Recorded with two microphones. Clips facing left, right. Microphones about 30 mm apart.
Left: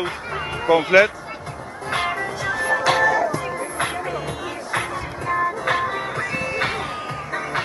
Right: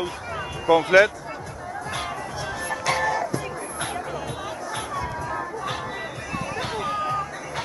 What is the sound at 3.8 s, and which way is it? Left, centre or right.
Music, left.